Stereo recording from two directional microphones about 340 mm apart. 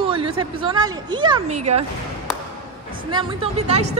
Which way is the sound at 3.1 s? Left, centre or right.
Centre.